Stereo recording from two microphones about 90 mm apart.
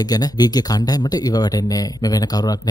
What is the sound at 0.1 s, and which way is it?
Speech, 45° left (ahead or behind).